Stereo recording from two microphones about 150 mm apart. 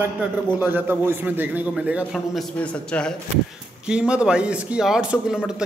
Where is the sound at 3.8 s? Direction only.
5° right (ahead or behind).